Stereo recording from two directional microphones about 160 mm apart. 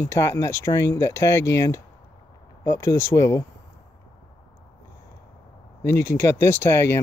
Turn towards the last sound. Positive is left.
turn(degrees=15)  # may be behind; listen again after turning